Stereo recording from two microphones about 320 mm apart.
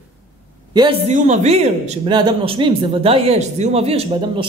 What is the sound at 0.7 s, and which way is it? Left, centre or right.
A woman's voice, centre.